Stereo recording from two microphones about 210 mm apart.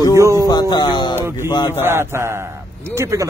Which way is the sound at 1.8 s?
10° right (ahead or behind).